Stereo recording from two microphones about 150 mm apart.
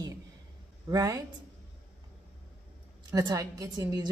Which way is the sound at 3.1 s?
25° right (ahead or behind).